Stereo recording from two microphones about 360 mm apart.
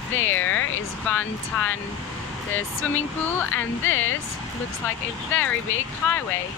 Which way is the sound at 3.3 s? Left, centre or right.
Centre.